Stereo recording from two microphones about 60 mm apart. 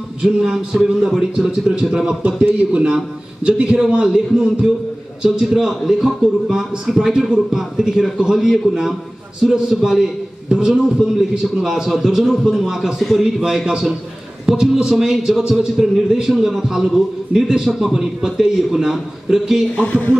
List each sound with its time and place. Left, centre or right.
0.2 s a man's voice: centre
19.8 s speech: left